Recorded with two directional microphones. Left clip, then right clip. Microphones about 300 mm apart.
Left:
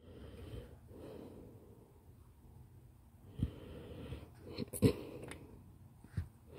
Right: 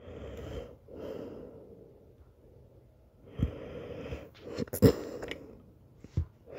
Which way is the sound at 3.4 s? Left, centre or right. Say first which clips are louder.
Right 9 dB; centre.